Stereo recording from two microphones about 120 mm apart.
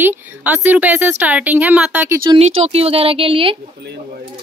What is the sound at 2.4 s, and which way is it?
A woman's voice, 60° right (ahead or behind).